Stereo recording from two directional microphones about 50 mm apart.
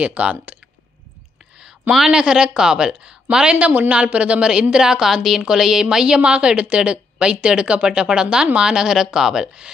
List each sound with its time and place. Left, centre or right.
0.0 s a woman's voice: right
2.0 s a woman's voice: centre
3.6 s a woman's voice: right
3.9 s a woman's voice: right